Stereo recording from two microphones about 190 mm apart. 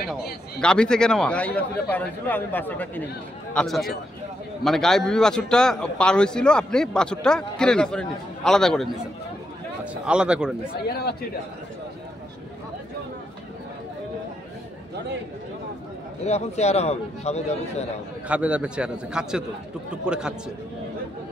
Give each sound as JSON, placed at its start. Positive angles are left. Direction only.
{"t": 0.6, "sound": "a man's voice", "side_deg": 5}
{"t": 10.0, "sound": "speech", "side_deg": -5}
{"t": 10.9, "sound": "speech", "side_deg": 55}
{"t": 16.3, "sound": "a man's voice", "side_deg": 35}
{"t": 18.3, "sound": "speech", "side_deg": -5}